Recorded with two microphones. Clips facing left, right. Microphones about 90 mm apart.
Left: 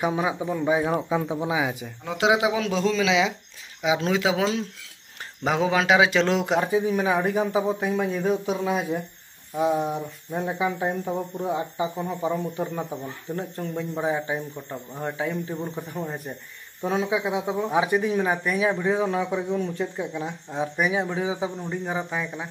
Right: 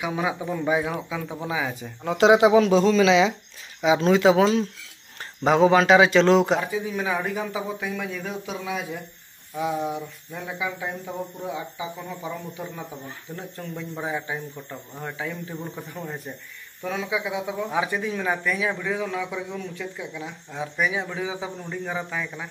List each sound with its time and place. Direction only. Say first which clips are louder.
0.1 s a man's voice: left 1 dB; 25° left (ahead or behind); by 6.6 s 5° left (ahead or behind)
6.6 s speech: left 5 dB; 40° left (ahead or behind)
6.9 s speech: left 4 dB; 25° left (ahead or behind)
9.6 s speech: left 4 dB; 30° left (ahead or behind)
9.9 s speech: left 4 dB; 40° left (ahead or behind); by 16.3 s 20° left (ahead or behind)
16.8 s speech: left 3 dB; 30° left (ahead or behind)